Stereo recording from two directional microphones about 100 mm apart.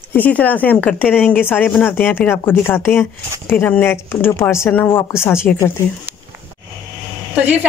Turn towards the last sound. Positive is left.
turn(degrees=-15)  # may be behind; listen again after turning